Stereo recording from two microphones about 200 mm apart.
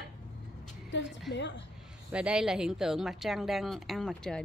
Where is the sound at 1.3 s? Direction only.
60° left (ahead or behind).